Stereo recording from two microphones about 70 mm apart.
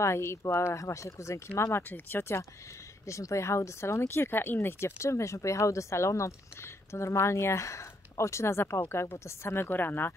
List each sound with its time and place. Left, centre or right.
0.0 s speech: left
3.1 s speech: left